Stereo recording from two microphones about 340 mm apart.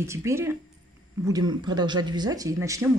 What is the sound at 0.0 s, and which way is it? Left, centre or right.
Speech, centre.